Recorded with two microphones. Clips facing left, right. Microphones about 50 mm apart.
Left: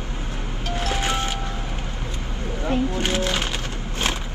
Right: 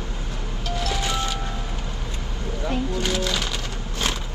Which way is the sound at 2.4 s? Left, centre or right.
Left.